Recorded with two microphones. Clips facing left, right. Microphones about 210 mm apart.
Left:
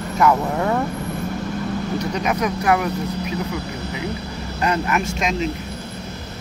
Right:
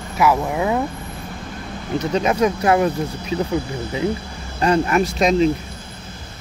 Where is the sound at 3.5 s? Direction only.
50° right (ahead or behind).